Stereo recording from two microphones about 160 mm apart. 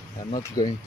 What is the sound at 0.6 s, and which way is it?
Speech, 25° left (ahead or behind).